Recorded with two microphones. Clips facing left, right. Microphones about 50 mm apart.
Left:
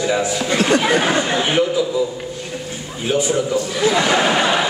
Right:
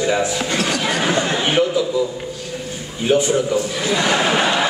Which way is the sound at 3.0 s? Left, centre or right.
Centre.